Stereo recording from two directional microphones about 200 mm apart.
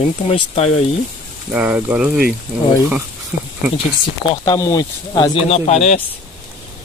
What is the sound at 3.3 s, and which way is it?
Speech, 5° right (ahead or behind).